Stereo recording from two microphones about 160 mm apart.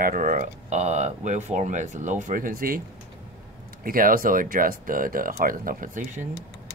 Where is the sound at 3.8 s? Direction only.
65° right (ahead or behind).